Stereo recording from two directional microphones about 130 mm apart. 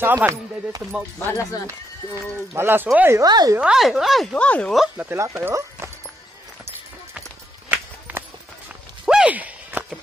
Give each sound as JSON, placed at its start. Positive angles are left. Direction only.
{"t": 0.0, "sound": "speech", "side_deg": -15}
{"t": 1.2, "sound": "speech", "side_deg": 25}
{"t": 2.5, "sound": "speech", "side_deg": -15}
{"t": 3.2, "sound": "speech", "side_deg": -30}
{"t": 3.5, "sound": "speech", "side_deg": -5}
{"t": 4.9, "sound": "speech", "side_deg": -15}
{"t": 9.0, "sound": "a sound", "side_deg": -5}